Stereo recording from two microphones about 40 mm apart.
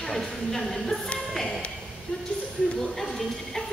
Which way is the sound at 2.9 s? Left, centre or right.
Centre.